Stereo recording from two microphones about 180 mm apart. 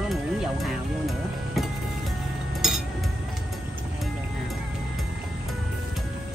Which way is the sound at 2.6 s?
Centre (ahead or behind).